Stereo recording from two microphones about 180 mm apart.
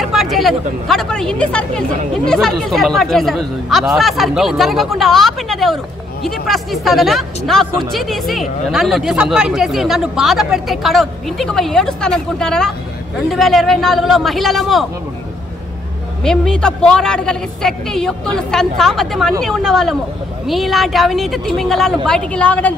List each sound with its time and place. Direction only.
0.0 s speech: centre (ahead or behind)
16.3 s speech: 5° left (ahead or behind)